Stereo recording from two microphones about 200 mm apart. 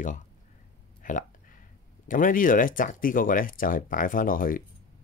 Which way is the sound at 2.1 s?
40° left (ahead or behind).